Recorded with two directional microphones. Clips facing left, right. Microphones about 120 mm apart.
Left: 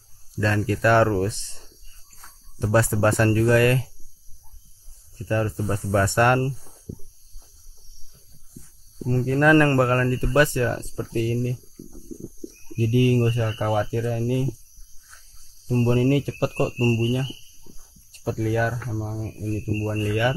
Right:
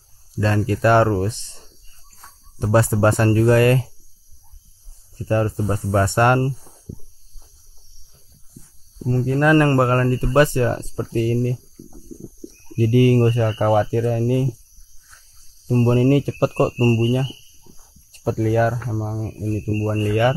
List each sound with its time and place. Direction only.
0.4 s speech: 25° right (ahead or behind)
2.6 s speech: 25° right (ahead or behind)
5.3 s speech: 30° right (ahead or behind)
9.0 s speech: 10° right (ahead or behind); by 11.5 s 40° right (ahead or behind)
12.7 s speech: 75° right (ahead or behind); by 14.4 s 45° right (ahead or behind)
15.6 s speech: 40° right (ahead or behind)